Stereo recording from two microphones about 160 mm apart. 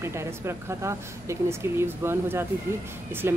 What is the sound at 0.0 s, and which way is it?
Speech, 15° right (ahead or behind).